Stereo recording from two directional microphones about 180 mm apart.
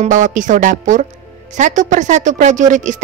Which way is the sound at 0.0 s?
45° right (ahead or behind).